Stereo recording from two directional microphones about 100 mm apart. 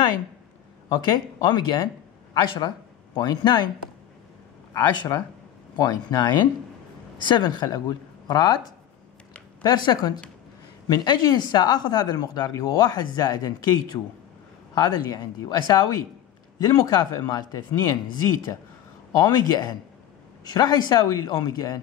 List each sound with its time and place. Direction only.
1.4 s speech: 45° left (ahead or behind)
4.7 s speech: 45° left (ahead or behind)
9.6 s speech: 45° left (ahead or behind)